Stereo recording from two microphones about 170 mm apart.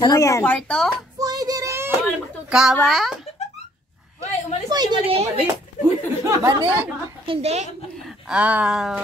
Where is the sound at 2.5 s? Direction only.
Centre (ahead or behind).